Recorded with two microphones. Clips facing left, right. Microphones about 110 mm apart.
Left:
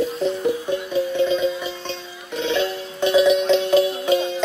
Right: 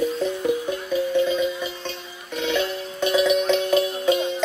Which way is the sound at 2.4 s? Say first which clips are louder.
Left 2 dB; 30° left (ahead or behind).